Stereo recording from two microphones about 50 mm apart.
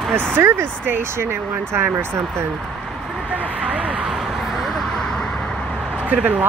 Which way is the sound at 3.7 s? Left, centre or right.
Right.